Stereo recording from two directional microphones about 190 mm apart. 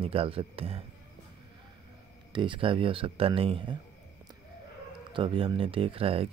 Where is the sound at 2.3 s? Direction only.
25° right (ahead or behind).